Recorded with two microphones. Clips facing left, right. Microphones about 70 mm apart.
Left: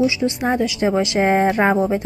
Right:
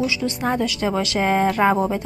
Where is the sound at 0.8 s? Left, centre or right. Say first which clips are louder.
Left 5 dB; left.